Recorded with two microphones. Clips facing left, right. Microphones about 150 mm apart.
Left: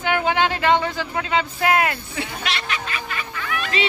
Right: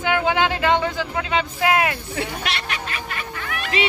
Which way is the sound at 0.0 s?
15° right (ahead or behind).